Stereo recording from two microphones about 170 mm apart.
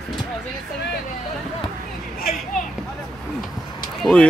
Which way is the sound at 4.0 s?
5° left (ahead or behind).